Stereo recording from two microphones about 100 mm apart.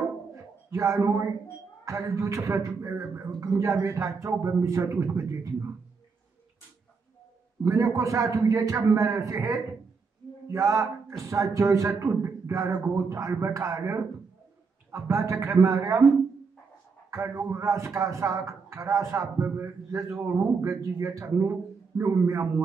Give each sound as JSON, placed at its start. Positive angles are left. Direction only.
{"t": 0.3, "sound": "bird", "side_deg": -30}
{"t": 1.9, "sound": "speech", "side_deg": -30}
{"t": 7.6, "sound": "a man's voice", "side_deg": -30}
{"t": 17.1, "sound": "speech", "side_deg": -25}